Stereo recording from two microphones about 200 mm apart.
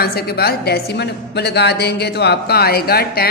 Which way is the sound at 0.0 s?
50° left (ahead or behind).